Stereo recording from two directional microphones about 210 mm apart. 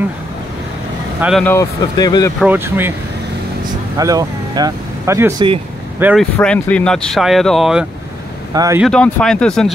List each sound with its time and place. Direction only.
1.4 s speech: 15° left (ahead or behind)
2.4 s speech: 10° right (ahead or behind)
3.9 s speech: 15° right (ahead or behind)
6.3 s speech: 5° left (ahead or behind)
8.5 s speech: 15° right (ahead or behind)
8.8 s speech: 5° left (ahead or behind)